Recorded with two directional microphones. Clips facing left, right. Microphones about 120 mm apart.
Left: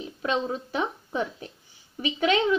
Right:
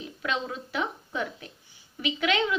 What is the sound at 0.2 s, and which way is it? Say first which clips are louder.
A woman's voice: left 4 dB; 30° left (ahead or behind).